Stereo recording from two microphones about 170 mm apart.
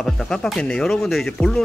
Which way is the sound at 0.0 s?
5° left (ahead or behind).